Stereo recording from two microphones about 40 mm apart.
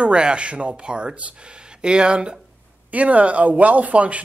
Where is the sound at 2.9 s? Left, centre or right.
Right.